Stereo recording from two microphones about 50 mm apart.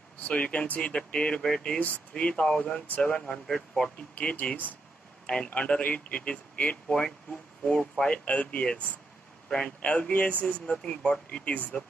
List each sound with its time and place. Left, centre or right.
0.2 s speech: left
1.8 s speech: left
4.1 s speech: left
6.9 s speech: centre
10.4 s speech: centre